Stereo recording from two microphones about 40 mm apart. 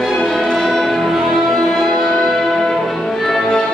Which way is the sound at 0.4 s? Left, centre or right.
Centre.